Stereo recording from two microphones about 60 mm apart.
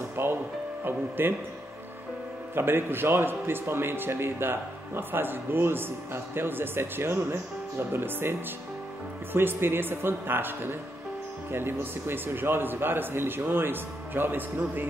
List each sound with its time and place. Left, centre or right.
0.1 s music: right
0.8 s a man's voice: right
2.5 s a man's voice: right